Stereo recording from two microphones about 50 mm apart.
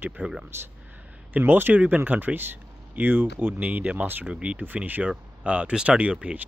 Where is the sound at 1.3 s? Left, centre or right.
Right.